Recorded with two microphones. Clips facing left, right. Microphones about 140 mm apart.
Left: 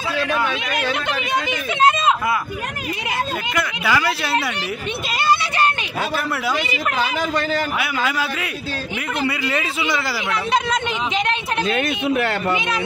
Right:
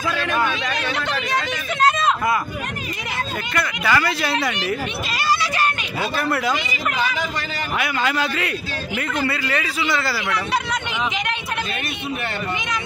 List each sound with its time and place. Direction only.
3.5 s speech: 5° left (ahead or behind)
6.1 s speech: 5° left (ahead or behind)
7.8 s a man's voice: 5° left (ahead or behind)
9.2 s speech: 20° left (ahead or behind)
11.7 s speech: 90° left